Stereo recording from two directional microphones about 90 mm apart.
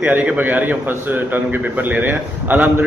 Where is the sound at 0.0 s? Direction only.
20° right (ahead or behind).